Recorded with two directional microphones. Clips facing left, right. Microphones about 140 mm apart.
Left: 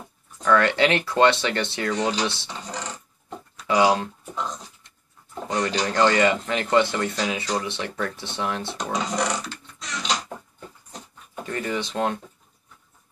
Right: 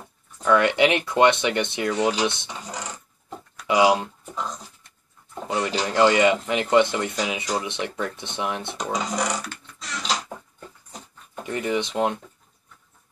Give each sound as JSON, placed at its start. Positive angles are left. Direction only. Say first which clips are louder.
{"t": 0.4, "sound": "speech", "louder": "right 1 dB", "side_deg": -15}
{"t": 4.3, "sound": "speech", "louder": "right 1 dB", "side_deg": 0}
{"t": 8.7, "sound": "speech", "louder": "even", "side_deg": 0}
{"t": 9.8, "sound": "a sound", "louder": "even", "side_deg": 0}
{"t": 11.4, "sound": "speech", "louder": "right 3 dB", "side_deg": -15}